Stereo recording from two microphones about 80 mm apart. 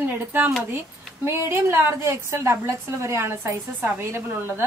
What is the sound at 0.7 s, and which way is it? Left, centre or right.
A woman's voice, right.